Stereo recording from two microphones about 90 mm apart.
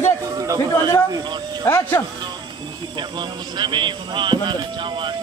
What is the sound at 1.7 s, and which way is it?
Speech, 25° left (ahead or behind).